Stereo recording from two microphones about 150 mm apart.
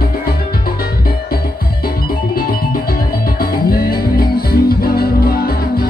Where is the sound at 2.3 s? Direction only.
80° left.